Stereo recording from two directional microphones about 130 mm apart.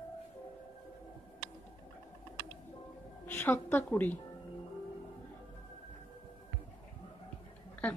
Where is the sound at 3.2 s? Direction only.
15° left (ahead or behind).